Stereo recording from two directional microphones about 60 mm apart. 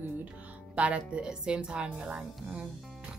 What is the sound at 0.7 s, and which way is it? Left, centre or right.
A woman's voice, centre.